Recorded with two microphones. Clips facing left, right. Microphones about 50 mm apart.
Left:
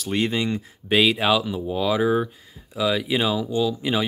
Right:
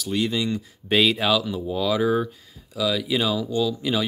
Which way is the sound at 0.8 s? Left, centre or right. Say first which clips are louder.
Left 1 dB; centre.